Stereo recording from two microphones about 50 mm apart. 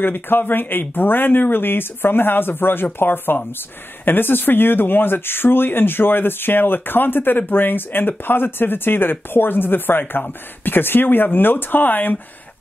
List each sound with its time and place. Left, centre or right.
0.0 s speech: left